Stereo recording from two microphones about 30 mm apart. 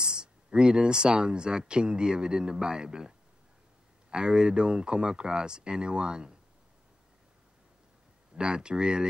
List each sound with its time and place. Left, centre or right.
0.0 s speech: right
8.4 s speech: right